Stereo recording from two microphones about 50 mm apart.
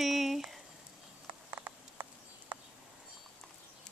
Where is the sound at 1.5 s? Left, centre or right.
Right.